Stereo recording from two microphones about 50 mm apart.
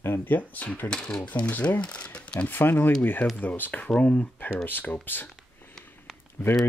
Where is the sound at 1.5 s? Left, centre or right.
Left.